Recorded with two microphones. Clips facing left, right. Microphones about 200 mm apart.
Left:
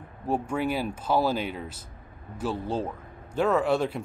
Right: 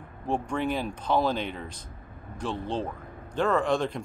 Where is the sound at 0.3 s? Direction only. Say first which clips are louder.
Left 1 dB; 5° left (ahead or behind).